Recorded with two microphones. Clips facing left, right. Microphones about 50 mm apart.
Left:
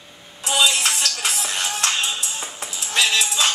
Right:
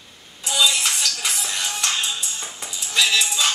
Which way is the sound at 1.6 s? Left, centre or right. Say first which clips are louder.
Left 2 dB; centre.